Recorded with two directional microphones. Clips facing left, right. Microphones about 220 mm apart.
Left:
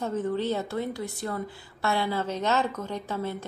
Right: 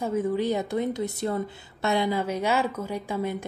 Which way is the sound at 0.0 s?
10° right (ahead or behind).